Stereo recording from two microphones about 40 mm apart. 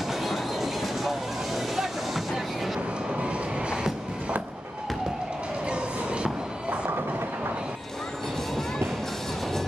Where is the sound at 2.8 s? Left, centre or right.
Right.